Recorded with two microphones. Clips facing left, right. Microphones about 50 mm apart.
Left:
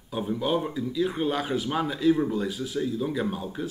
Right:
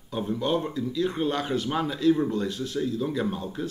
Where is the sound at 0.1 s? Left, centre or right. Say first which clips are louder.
Even; centre.